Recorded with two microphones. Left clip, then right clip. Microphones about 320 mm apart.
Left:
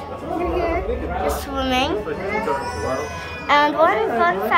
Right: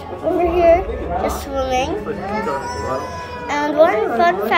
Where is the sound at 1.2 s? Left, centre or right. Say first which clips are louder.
Right 1 dB; centre.